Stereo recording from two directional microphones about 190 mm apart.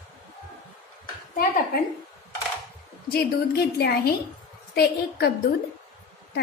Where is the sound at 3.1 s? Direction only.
55° left (ahead or behind).